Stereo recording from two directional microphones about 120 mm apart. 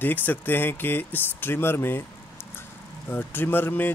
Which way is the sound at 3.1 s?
15° left (ahead or behind).